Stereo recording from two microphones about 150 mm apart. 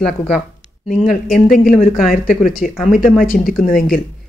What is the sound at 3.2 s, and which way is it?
Speech, 70° left (ahead or behind).